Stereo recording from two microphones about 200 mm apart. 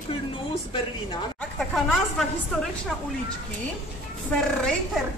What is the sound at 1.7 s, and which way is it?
Speech, centre (ahead or behind).